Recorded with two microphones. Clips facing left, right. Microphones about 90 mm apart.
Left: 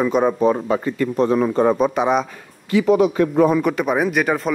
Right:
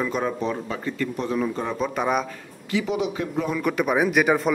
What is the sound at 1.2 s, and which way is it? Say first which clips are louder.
Speech: left 11 dB; 60° left (ahead or behind).